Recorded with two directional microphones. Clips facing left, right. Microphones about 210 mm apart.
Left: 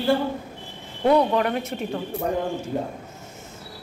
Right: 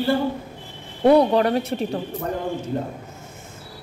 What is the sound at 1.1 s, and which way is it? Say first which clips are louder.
Speech: right 4 dB; 35° right (ahead or behind).